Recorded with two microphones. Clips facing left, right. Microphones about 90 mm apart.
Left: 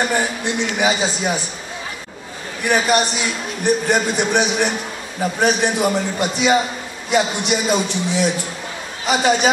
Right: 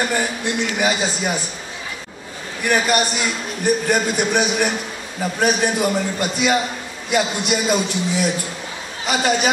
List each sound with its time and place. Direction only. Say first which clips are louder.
0.0 s a man's voice: left 2 dB; 20° left (ahead or behind)
0.7 s a man's voice: left 3 dB; centre (ahead or behind)
2.9 s a man's voice: left 1 dB; centre (ahead or behind)